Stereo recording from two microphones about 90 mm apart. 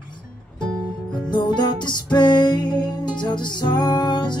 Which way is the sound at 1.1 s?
55° left (ahead or behind).